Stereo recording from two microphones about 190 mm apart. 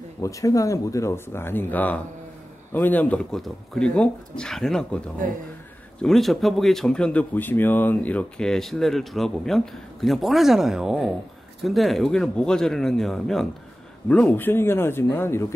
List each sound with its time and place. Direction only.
0.2 s speech: 15° left (ahead or behind)